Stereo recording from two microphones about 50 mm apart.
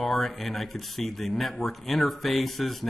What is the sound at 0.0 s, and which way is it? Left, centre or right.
Speech, centre.